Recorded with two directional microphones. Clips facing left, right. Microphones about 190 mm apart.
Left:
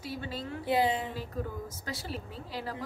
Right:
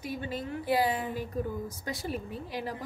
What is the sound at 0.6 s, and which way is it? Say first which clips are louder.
Speech: even; 25° left (ahead or behind).